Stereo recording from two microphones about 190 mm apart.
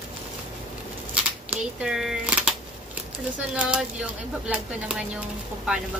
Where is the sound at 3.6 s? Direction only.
5° right (ahead or behind).